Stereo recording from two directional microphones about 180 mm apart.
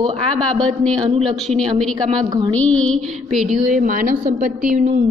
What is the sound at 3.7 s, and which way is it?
A woman's voice, 50° right (ahead or behind).